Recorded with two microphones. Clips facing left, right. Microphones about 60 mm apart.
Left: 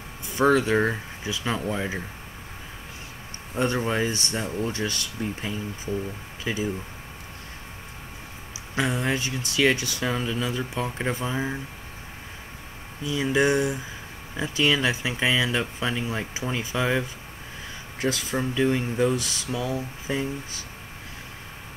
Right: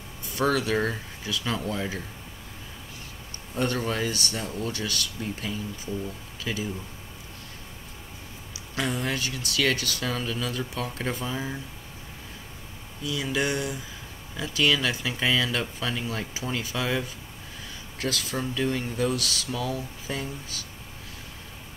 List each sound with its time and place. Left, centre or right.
0.4 s speech: left
3.5 s speech: left
8.7 s speech: centre
13.0 s speech: left